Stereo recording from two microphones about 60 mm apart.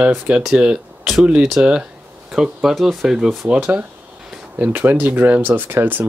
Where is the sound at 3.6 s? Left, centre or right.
Right.